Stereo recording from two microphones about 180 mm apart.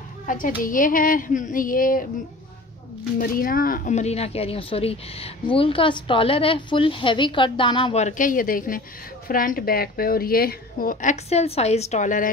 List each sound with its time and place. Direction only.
0.3 s a woman's voice: 50° left (ahead or behind)
3.2 s speech: 55° left (ahead or behind); by 8.0 s 25° left (ahead or behind)
8.0 s a woman's voice: 45° left (ahead or behind)